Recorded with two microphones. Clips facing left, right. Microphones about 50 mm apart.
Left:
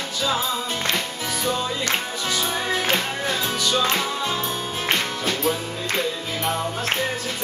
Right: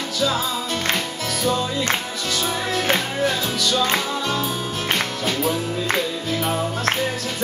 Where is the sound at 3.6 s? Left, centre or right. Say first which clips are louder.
Even; left.